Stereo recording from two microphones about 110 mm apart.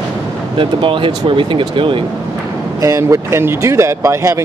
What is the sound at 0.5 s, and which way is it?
Speech, 50° right (ahead or behind).